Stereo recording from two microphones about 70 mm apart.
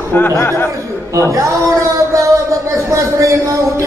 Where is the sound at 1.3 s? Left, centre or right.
Right.